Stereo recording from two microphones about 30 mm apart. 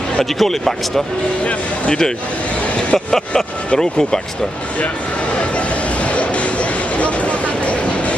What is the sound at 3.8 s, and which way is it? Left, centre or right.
Speech, left.